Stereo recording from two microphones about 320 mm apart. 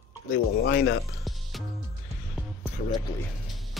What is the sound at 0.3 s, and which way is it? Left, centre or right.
Speech, left.